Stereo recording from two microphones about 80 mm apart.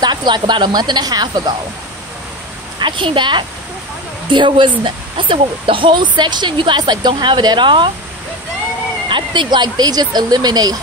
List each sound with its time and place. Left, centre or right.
0.0 s speech: right
2.8 s a woman's voice: right
9.1 s speech: right